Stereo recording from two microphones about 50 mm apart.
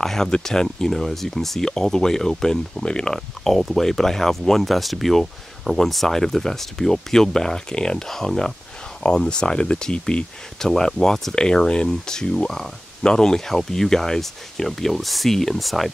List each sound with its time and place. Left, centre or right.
0.0 s speech: centre
3.5 s speech: centre